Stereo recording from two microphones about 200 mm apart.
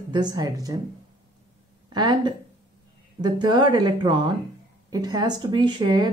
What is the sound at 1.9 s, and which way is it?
Speech, 20° right (ahead or behind).